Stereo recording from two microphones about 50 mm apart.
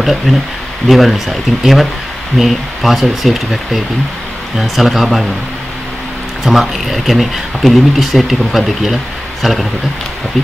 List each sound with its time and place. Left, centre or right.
0.0 s speech: centre
6.4 s speech: centre